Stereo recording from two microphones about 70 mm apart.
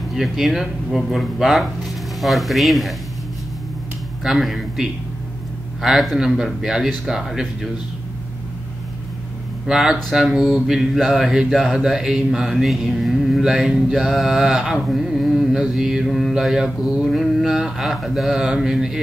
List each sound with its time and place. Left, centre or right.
0.1 s mantra: centre
4.2 s mantra: centre
7.1 s speech: centre
9.7 s mantra: centre
10.1 s speech: centre
14.8 s mantra: centre